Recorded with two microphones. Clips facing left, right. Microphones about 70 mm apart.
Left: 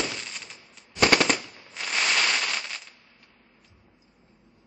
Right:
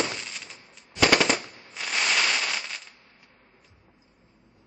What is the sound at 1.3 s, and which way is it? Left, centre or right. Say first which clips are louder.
Machine gun: right 3 dB; right.